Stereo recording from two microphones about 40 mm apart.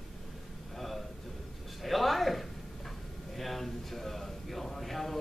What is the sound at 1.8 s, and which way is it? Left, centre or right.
Speech, centre.